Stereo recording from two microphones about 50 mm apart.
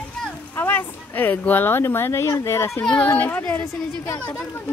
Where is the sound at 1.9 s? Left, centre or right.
Left.